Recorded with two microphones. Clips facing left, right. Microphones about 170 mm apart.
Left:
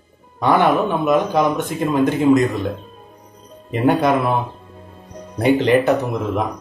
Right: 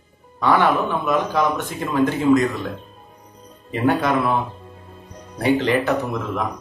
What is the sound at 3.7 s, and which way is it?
Speech, 15° left (ahead or behind).